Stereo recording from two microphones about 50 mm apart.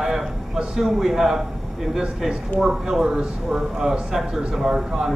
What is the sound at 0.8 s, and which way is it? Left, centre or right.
Speech, centre.